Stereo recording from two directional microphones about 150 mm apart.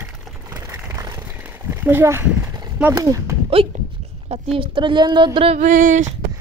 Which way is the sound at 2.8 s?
20° right (ahead or behind).